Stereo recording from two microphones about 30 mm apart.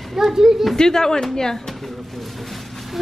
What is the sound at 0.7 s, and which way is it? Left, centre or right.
A woman's voice, centre.